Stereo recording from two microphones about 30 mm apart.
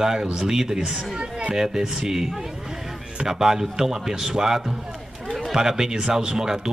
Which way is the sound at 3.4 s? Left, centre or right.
Centre.